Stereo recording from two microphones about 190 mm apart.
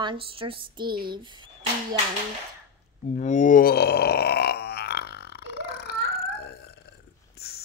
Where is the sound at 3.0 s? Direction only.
40° left (ahead or behind); by 5.9 s 55° left (ahead or behind).